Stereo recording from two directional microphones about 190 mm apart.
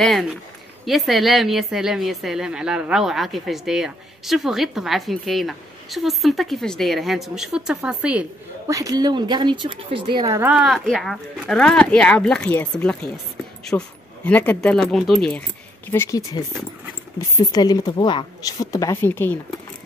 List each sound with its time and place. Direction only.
0.0 s a woman's voice: centre (ahead or behind)
8.7 s a woman's voice: 20° right (ahead or behind); by 15.4 s 5° left (ahead or behind)
15.9 s a woman's voice: 15° left (ahead or behind)